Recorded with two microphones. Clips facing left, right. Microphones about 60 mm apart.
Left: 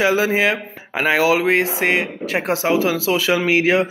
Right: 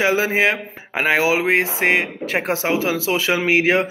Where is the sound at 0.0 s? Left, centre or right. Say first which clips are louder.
Left 1 dB; right.